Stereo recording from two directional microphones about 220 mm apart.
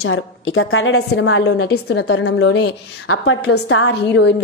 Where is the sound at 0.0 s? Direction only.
65° left (ahead or behind).